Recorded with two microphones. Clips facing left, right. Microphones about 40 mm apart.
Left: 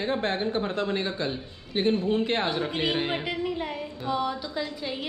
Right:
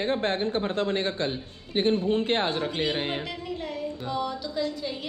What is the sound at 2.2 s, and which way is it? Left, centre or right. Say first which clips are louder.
Speech: right 1 dB; right.